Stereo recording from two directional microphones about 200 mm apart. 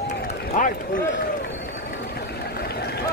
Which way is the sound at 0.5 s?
40° left (ahead or behind).